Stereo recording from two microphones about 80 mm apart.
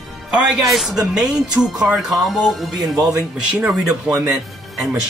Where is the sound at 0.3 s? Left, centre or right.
Centre.